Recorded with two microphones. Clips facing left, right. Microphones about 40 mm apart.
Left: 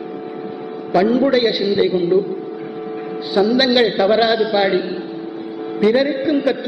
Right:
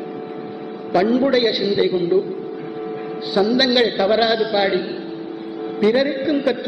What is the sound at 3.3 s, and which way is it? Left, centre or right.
A man's voice, centre.